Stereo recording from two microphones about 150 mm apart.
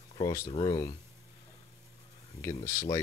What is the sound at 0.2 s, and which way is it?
Speech, 20° left (ahead or behind).